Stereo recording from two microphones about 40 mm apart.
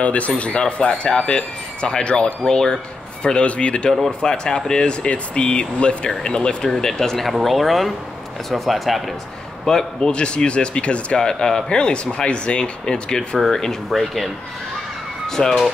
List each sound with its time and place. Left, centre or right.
0.0 s speech: left; by 2.8 s centre
3.3 s speech: left
4.3 s speech: centre
9.7 s speech: centre
11.1 s speech: centre
13.9 s speech: centre
15.2 s speech: centre